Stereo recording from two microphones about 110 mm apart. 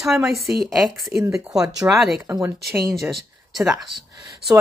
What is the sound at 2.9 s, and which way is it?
Speech, centre (ahead or behind).